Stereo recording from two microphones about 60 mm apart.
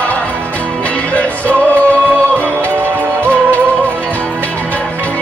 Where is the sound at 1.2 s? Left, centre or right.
Left.